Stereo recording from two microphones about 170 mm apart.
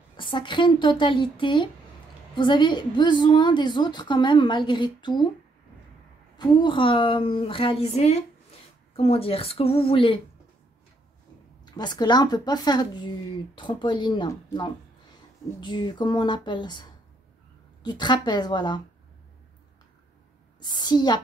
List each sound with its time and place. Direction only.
0.2 s a woman's voice: 30° left (ahead or behind)
6.3 s a woman's voice: 30° left (ahead or behind)
11.6 s a woman's voice: 25° left (ahead or behind)
17.8 s a woman's voice: 25° left (ahead or behind)
20.6 s a woman's voice: 25° left (ahead or behind)